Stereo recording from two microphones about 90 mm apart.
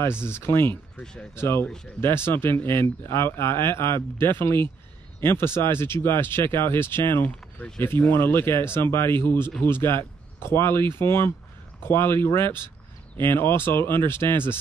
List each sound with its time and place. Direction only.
0.3 s speech: 25° left (ahead or behind)
0.9 s speech: 10° left (ahead or behind)
1.3 s speech: 25° left (ahead or behind)